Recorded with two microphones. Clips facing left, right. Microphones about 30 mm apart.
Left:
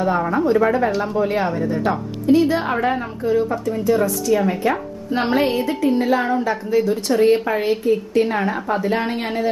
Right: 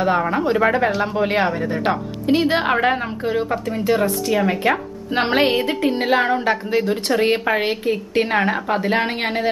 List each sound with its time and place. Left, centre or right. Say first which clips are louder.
0.3 s a woman's voice: left 1 dB; right
4.3 s a woman's voice: even; right